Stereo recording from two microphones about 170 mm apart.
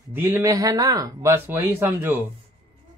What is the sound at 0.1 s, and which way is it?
Speech, 15° right (ahead or behind).